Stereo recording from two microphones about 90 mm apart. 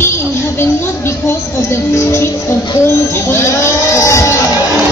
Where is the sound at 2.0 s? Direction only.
30° left (ahead or behind).